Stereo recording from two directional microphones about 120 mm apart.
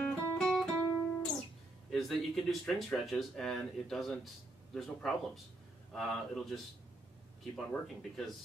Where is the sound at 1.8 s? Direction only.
Centre (ahead or behind).